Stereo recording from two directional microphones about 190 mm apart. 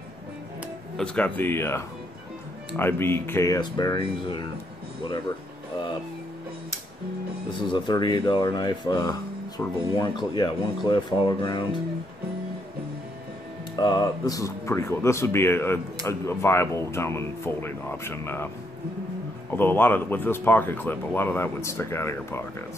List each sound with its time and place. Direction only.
0.9 s speech: 5° left (ahead or behind)
2.8 s speech: 10° left (ahead or behind)
7.7 s speech: 25° left (ahead or behind)
13.7 s speech: 20° left (ahead or behind)
19.5 s speech: 10° left (ahead or behind)